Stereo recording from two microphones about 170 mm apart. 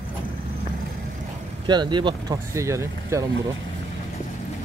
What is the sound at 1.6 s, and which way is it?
Speech, 25° right (ahead or behind).